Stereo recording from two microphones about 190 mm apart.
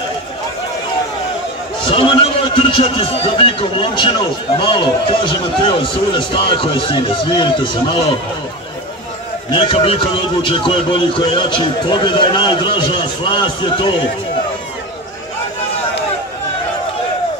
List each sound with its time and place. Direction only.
1.9 s a man's voice: 30° left (ahead or behind)
9.5 s a man's voice: 30° left (ahead or behind)